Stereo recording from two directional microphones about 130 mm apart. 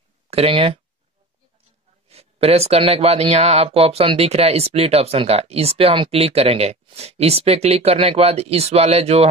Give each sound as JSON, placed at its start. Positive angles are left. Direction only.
{"t": 0.3, "sound": "speech", "side_deg": -50}
{"t": 2.0, "sound": "speech", "side_deg": -50}